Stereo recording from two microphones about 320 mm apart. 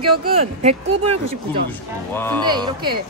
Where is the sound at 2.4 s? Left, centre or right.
Centre.